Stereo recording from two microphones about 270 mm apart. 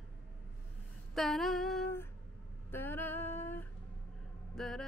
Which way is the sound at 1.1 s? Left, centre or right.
Centre.